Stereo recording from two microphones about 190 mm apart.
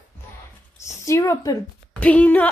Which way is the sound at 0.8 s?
15° left (ahead or behind).